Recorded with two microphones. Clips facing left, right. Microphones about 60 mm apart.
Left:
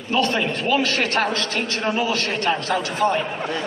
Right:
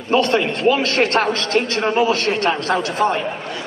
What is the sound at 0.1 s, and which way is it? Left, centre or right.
A man's voice, right.